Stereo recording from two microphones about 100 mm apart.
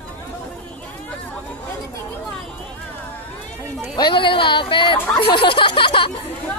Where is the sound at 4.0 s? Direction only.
55° left (ahead or behind).